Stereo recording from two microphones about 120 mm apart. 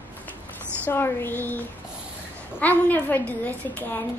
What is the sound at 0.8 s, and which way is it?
Speech, 20° left (ahead or behind).